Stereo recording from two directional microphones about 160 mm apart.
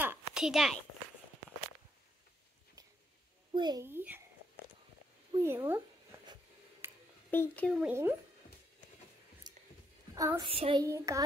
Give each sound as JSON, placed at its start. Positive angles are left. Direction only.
{"t": 0.0, "sound": "a sound", "side_deg": -10}
{"t": 3.5, "sound": "a child's voice", "side_deg": -25}
{"t": 3.8, "sound": "speech", "side_deg": -15}
{"t": 5.4, "sound": "speech", "side_deg": -15}
{"t": 6.8, "sound": "a sound", "side_deg": -15}
{"t": 7.2, "sound": "a child's voice", "side_deg": 10}
{"t": 7.7, "sound": "speech", "side_deg": -10}
{"t": 9.5, "sound": "a sound", "side_deg": -25}
{"t": 10.1, "sound": "a woman's voice", "side_deg": -20}
{"t": 10.4, "sound": "child singing", "side_deg": -35}
{"t": 10.8, "sound": "a child's voice", "side_deg": -20}